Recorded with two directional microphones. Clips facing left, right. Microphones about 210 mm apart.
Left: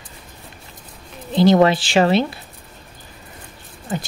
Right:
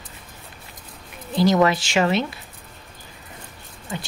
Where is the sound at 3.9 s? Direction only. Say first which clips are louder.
Left 6 dB; 45° left (ahead or behind).